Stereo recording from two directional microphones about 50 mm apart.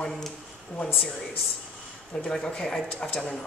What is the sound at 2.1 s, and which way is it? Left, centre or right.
Speech, centre.